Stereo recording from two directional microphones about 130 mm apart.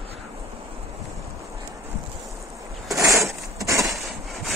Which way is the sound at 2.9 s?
25° right (ahead or behind).